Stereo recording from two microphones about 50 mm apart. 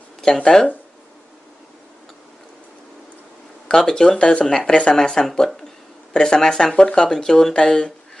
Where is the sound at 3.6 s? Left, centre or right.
Centre.